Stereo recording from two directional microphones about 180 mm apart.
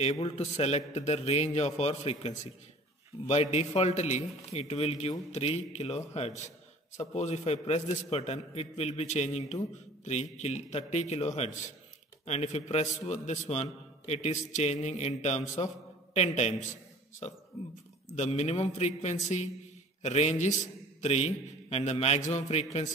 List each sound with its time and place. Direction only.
0.0 s a man's voice: 35° left (ahead or behind)